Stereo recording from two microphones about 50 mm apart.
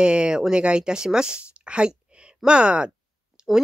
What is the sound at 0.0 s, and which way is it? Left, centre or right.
Speech, centre.